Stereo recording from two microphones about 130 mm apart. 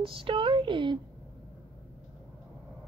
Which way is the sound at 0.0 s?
45° right (ahead or behind).